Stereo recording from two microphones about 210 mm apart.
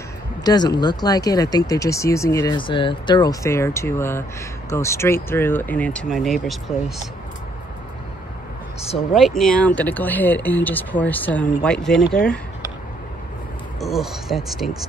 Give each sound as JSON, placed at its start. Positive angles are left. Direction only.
{"t": 0.4, "sound": "speech", "side_deg": 20}
{"t": 9.1, "sound": "speech", "side_deg": 0}
{"t": 13.7, "sound": "speech", "side_deg": 0}